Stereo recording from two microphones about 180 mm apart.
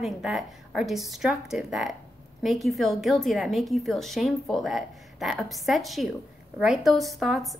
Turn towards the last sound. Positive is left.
turn(degrees=0)  # may be behind; listen again after turning